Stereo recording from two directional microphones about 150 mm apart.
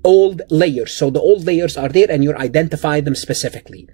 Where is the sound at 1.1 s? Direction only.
15° right (ahead or behind).